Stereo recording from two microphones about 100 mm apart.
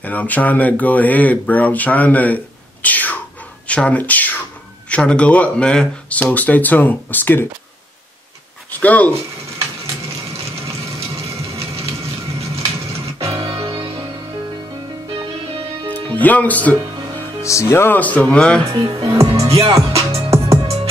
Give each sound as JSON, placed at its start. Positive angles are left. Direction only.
{"t": 0.0, "sound": "speech", "side_deg": 15}
{"t": 8.6, "sound": "a sound", "side_deg": 15}
{"t": 11.1, "sound": "vehicle", "side_deg": -90}
{"t": 12.4, "sound": "music", "side_deg": -85}
{"t": 15.9, "sound": "music", "side_deg": 15}
{"t": 17.4, "sound": "speech", "side_deg": 30}
{"t": 18.8, "sound": "speech", "side_deg": -50}
{"t": 19.1, "sound": "speech", "side_deg": -35}
{"t": 20.2, "sound": "music", "side_deg": -30}